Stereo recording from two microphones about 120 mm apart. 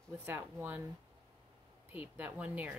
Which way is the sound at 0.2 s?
15° right (ahead or behind).